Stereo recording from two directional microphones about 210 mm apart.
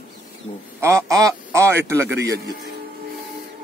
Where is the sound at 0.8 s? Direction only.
15° right (ahead or behind).